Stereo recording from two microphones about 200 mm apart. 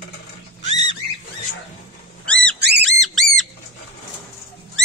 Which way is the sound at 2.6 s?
55° right (ahead or behind).